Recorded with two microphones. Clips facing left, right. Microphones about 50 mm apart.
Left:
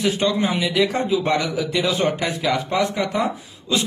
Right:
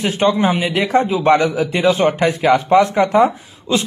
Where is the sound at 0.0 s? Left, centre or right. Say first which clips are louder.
Right 5 dB; right.